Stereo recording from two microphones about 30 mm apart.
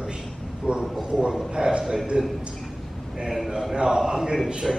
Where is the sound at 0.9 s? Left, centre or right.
Centre.